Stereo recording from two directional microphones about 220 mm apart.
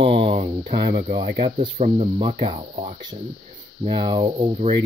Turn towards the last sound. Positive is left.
turn(degrees=-25)  # may be behind; listen again after turning